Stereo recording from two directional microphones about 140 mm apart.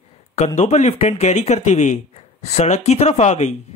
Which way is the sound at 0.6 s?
50° left (ahead or behind).